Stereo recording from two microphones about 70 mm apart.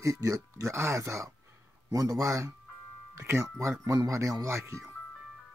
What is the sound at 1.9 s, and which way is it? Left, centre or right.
Speech, right.